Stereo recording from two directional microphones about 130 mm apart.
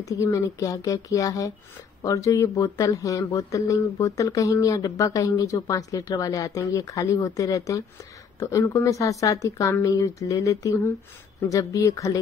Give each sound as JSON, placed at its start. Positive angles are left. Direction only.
{"t": 0.0, "sound": "speech", "side_deg": 25}